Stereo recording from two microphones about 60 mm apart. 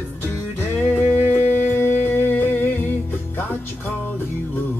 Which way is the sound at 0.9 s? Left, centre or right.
Left.